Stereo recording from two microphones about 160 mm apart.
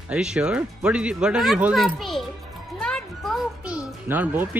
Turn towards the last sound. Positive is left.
turn(degrees=-10)  # may be behind; listen again after turning